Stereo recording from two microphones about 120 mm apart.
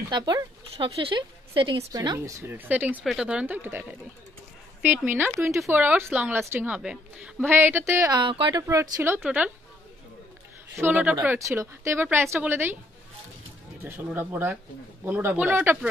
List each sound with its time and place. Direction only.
0.1 s a woman's voice: 35° right (ahead or behind)
1.8 s speech: 35° right (ahead or behind)
2.1 s a woman's voice: 20° right (ahead or behind)
4.8 s a woman's voice: 15° right (ahead or behind)
6.7 s a woman's voice: 10° right (ahead or behind); by 8.2 s 25° right (ahead or behind)
8.2 s speech: 40° right (ahead or behind)
8.6 s speech: 25° right (ahead or behind)
9.2 s a woman's voice: 10° right (ahead or behind)
10.8 s a woman's voice: 15° right (ahead or behind)
11.3 s speech: 25° right (ahead or behind)
14.0 s a woman's voice: 15° right (ahead or behind)